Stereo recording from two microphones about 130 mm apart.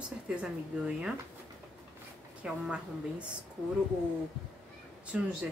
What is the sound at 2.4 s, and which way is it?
Speech, 5° right (ahead or behind).